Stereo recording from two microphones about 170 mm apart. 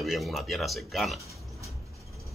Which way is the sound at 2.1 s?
Centre (ahead or behind).